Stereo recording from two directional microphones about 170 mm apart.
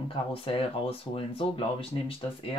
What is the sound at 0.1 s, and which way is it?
Speech, 35° left (ahead or behind).